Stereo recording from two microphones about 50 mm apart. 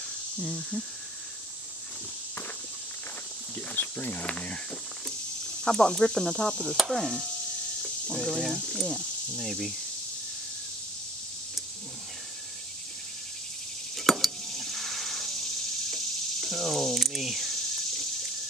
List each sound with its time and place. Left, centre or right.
0.4 s speech: centre
3.5 s cricket: left
4.2 s speech: left
5.6 s speech: centre
6.8 s chopping: centre
8.2 s a sound: centre
8.7 s speech: centre
9.4 s chopping: centre
13.9 s a sound: centre